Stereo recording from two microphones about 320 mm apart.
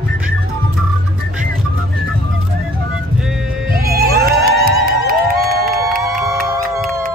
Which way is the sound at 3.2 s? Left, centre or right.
Centre.